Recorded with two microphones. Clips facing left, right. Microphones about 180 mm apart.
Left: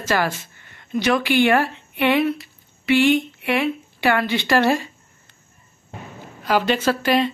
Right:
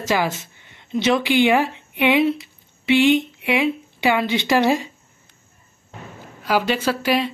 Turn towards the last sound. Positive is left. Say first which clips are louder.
# left 1 dB
turn(degrees=-10)  # may be behind; listen again after turning